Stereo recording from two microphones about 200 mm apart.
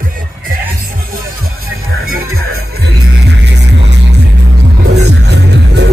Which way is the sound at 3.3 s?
60° right (ahead or behind).